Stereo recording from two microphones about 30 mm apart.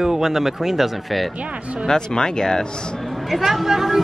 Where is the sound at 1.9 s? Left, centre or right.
Left.